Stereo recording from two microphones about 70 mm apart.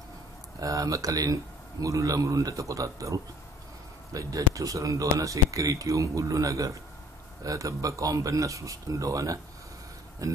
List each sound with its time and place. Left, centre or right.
0.6 s speech: right